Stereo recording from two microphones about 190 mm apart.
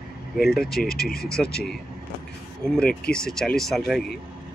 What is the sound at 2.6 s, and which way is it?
Speech, 5° left (ahead or behind).